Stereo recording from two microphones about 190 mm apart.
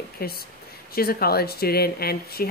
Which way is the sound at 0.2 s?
55° left (ahead or behind).